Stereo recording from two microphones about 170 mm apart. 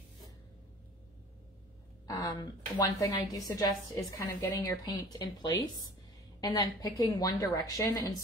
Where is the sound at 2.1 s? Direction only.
20° left (ahead or behind).